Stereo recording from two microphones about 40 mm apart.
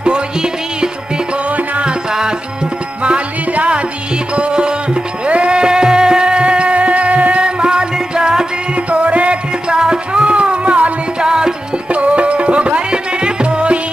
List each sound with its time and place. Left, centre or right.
0.0 s music: right
3.0 s music: right
7.4 s music: right
8.7 s music: right
9.7 s music: right
11.2 s music: centre
11.9 s music: right